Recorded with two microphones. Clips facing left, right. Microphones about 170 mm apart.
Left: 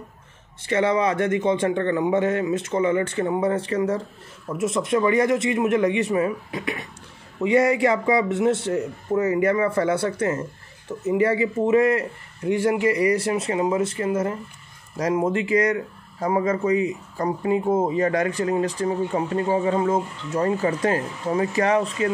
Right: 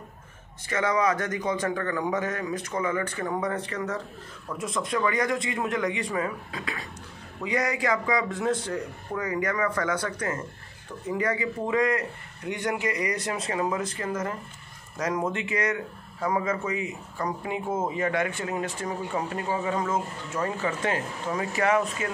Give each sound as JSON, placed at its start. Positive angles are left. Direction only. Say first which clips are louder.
{"t": 0.7, "sound": "a man's voice", "louder": "left 4 dB", "side_deg": 30}